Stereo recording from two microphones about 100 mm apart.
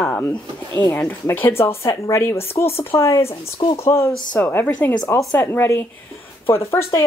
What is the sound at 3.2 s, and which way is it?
Speech, 75° left (ahead or behind).